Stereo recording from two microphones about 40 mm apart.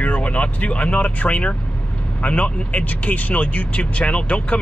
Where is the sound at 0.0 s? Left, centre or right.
Left.